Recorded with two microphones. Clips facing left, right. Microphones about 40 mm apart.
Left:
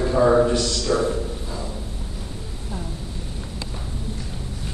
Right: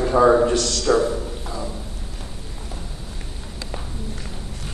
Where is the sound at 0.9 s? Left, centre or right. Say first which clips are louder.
Right 4 dB; right.